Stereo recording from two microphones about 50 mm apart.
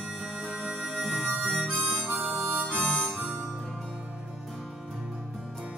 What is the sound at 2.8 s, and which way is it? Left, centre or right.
Harmonica, centre.